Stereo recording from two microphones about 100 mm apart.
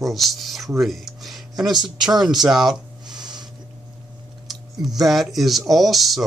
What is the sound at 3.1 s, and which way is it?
Snort, 45° right (ahead or behind).